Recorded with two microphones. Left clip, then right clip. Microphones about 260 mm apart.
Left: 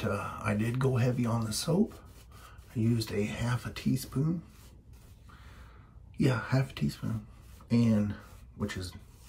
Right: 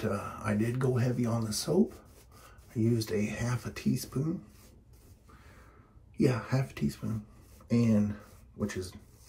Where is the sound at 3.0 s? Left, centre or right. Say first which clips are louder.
Right 1 dB; centre.